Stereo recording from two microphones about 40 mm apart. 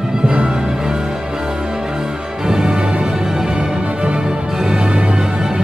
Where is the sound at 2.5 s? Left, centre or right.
Centre.